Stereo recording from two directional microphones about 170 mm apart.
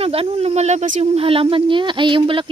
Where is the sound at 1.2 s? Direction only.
30° right (ahead or behind).